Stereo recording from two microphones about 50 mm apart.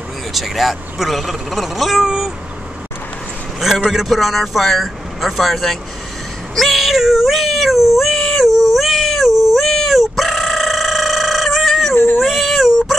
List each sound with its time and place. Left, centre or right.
0.3 s speech: centre
3.9 s speech: centre
6.5 s cat: centre
11.9 s a sound: left
12.2 s whimper: centre